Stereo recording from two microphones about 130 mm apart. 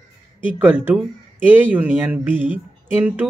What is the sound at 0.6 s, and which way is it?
A man's voice, 10° right (ahead or behind).